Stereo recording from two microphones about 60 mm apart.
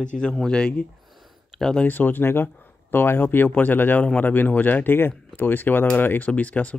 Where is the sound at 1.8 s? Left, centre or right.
Left.